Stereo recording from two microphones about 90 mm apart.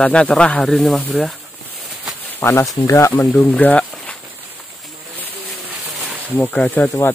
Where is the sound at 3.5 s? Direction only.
20° left (ahead or behind).